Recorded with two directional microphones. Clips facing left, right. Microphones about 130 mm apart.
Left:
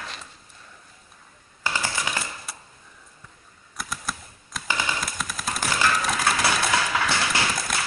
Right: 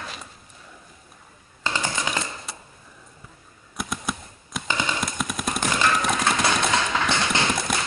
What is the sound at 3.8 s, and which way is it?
Typewriter, centre (ahead or behind).